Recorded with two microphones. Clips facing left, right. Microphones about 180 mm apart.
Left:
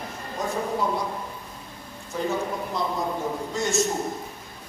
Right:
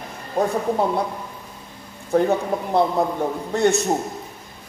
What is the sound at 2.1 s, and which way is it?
A man's voice, 60° right (ahead or behind).